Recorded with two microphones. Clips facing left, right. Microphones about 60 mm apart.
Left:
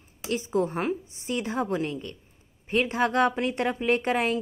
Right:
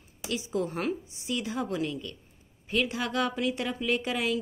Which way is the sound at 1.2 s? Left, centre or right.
Left.